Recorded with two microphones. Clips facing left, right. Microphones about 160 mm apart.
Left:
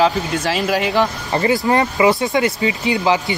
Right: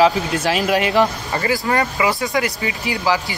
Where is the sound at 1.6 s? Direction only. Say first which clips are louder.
Left 5 dB; 25° left (ahead or behind).